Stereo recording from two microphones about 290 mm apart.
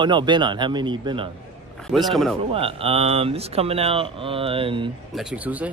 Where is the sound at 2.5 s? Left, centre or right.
Centre.